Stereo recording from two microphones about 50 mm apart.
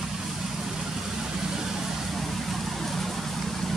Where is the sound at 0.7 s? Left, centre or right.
Centre.